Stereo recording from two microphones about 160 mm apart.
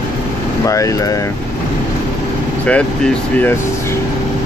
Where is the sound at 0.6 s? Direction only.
20° left (ahead or behind).